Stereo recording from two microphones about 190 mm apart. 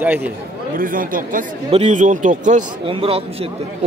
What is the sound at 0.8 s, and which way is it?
A man's voice, 45° right (ahead or behind).